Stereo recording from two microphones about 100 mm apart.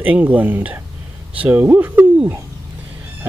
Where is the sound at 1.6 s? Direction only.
20° right (ahead or behind).